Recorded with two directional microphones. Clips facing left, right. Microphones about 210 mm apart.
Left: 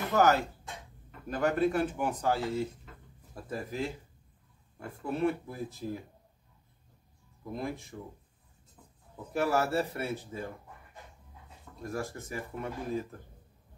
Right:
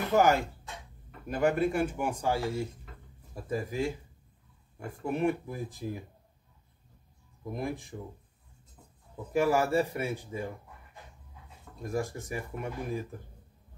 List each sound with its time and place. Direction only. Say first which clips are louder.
0.1 s speech: right 1 dB; 10° right (ahead or behind)
7.5 s speech: right 1 dB; 15° right (ahead or behind)
9.3 s speech: right 3 dB; 15° right (ahead or behind)
11.8 s speech: right 3 dB; 15° right (ahead or behind)